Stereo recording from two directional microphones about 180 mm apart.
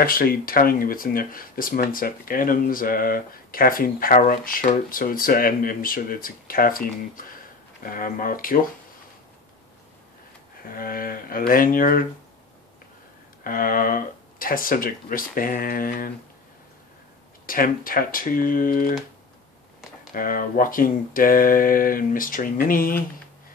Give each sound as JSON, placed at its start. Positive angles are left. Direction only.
{"t": 0.0, "sound": "speech", "side_deg": 55}
{"t": 10.6, "sound": "speech", "side_deg": 55}
{"t": 13.4, "sound": "speech", "side_deg": 50}
{"t": 17.5, "sound": "speech", "side_deg": 50}
{"t": 20.1, "sound": "speech", "side_deg": 50}